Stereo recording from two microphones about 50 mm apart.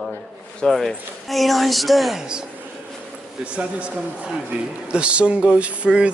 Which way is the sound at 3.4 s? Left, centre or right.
Right.